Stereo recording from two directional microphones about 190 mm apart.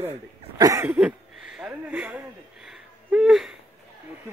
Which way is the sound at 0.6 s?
15° right (ahead or behind).